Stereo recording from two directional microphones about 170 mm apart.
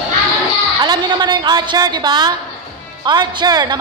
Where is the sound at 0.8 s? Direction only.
25° right (ahead or behind).